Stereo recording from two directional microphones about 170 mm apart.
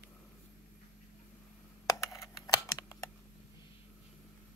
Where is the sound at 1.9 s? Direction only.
20° left (ahead or behind).